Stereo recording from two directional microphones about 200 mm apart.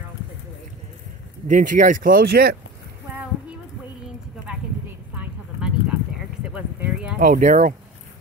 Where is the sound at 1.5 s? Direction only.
40° right (ahead or behind).